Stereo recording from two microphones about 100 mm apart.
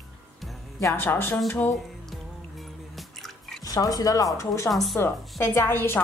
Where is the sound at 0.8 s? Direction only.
25° left (ahead or behind).